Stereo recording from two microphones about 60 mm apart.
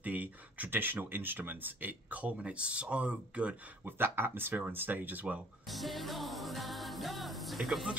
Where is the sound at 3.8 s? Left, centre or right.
Right.